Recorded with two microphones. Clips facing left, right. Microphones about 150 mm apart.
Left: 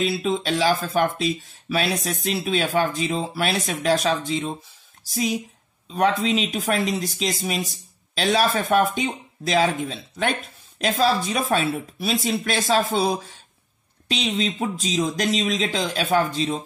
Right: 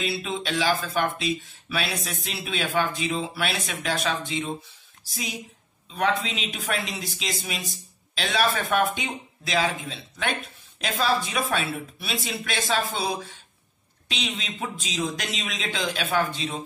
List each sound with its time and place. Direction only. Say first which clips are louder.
0.0 s speech: left 6 dB; 40° left (ahead or behind)
5.9 s speech: left 5 dB; 40° left (ahead or behind)